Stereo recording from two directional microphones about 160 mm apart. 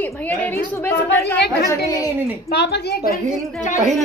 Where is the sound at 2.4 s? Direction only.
90° left.